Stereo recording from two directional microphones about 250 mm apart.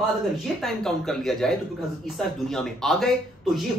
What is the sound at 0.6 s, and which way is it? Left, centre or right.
Speech, centre.